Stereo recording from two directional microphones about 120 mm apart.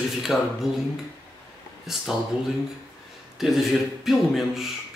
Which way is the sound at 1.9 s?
5° right (ahead or behind).